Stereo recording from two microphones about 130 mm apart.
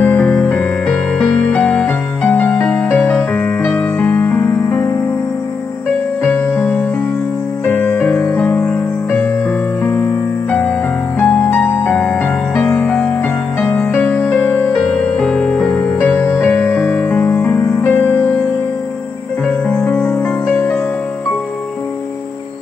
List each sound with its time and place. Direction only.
0.0 s music: 15° left (ahead or behind)
0.8 s music: centre (ahead or behind); by 4.9 s 20° left (ahead or behind)
6.2 s music: 15° left (ahead or behind)
11.1 s music: 20° left (ahead or behind)
15.1 s music: 5° left (ahead or behind)
19.7 s music: 10° left (ahead or behind)